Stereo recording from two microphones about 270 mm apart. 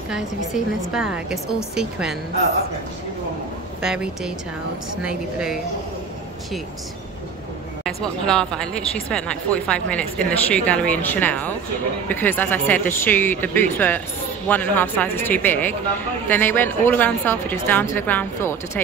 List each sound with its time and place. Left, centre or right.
0.9 s speech: centre
3.8 s speech: centre
7.8 s speech: centre